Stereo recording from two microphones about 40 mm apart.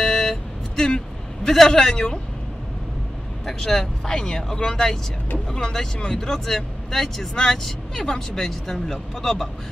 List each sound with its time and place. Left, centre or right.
0.0 s vehicle: centre
1.5 s speech: centre
3.4 s speech: centre